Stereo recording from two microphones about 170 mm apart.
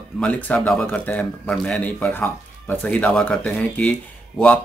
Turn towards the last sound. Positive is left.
turn(degrees=5)  # may be behind; listen again after turning